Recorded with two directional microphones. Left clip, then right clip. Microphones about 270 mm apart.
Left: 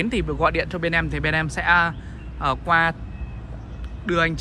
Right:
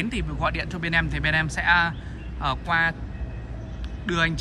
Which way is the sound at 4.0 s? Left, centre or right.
Centre.